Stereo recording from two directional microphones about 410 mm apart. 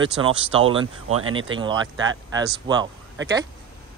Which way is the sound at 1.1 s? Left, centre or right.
Right.